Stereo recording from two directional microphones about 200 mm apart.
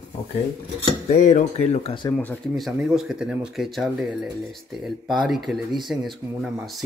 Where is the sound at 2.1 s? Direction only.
Centre (ahead or behind).